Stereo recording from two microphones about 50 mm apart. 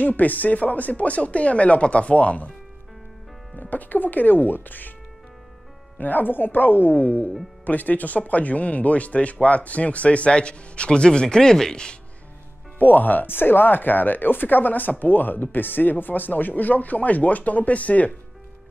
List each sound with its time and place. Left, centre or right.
0.0 s speech: left
3.5 s speech: left
5.9 s speech: left; by 12.0 s centre
12.7 s speech: left